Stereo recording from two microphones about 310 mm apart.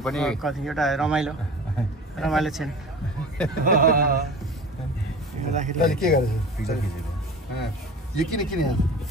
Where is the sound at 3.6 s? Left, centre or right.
Right.